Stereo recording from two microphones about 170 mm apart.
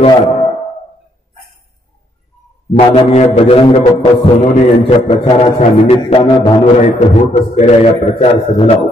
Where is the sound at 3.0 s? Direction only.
35° left (ahead or behind).